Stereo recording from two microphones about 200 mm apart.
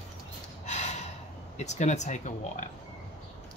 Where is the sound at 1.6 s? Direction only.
35° left (ahead or behind).